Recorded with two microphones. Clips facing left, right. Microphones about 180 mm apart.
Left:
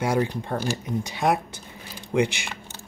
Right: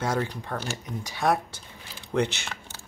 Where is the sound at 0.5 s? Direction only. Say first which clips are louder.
Left 6 dB; 30° left (ahead or behind).